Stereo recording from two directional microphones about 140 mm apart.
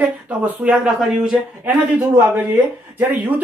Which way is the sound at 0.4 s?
10° right (ahead or behind).